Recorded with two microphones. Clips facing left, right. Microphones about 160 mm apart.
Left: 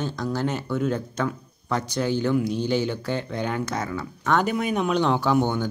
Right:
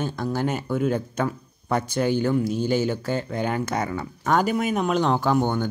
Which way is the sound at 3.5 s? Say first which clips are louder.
Right 2 dB; 10° right (ahead or behind).